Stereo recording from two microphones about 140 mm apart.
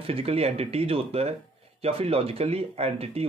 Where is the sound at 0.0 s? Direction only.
45° right (ahead or behind).